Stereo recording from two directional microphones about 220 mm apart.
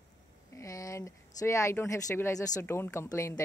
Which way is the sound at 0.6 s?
15° left (ahead or behind).